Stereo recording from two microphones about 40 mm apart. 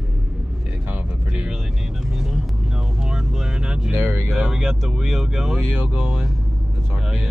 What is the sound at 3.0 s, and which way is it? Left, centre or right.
Speech, centre.